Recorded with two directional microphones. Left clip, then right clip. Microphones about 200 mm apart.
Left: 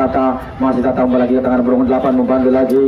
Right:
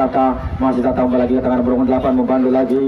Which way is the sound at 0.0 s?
40° right (ahead or behind).